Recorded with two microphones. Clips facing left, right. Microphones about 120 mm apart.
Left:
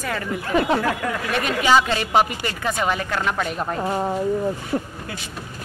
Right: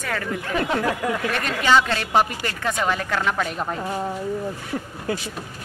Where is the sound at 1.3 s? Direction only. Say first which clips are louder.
Left 2 dB; 10° left (ahead or behind).